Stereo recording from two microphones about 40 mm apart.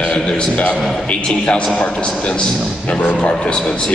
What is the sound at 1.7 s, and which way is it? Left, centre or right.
A man's voice, left.